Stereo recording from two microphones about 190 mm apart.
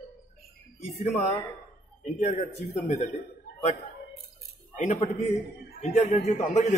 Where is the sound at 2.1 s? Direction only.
35° left (ahead or behind).